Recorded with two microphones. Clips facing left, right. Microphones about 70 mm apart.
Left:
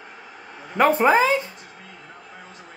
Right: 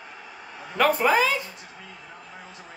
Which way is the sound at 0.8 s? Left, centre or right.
Left.